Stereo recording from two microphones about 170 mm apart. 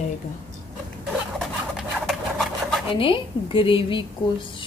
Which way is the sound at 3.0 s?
30° left (ahead or behind).